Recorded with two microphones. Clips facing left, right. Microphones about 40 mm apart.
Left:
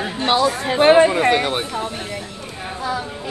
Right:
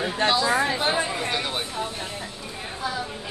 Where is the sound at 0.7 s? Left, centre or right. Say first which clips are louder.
Left 12 dB; left.